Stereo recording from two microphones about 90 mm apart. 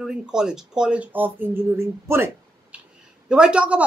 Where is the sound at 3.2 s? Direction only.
10° right (ahead or behind).